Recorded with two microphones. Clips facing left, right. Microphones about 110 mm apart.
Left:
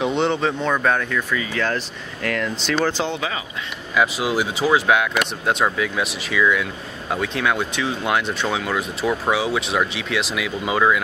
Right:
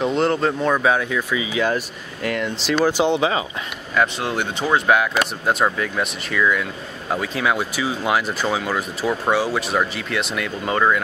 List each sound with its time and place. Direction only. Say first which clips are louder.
0.0 s speech: right 1 dB; centre (ahead or behind)
2.7 s speech: right 5 dB; 15° right (ahead or behind)
3.9 s speech: left 1 dB; 5° left (ahead or behind)